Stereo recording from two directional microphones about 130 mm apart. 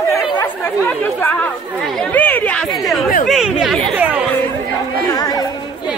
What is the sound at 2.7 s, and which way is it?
Chatter, centre (ahead or behind).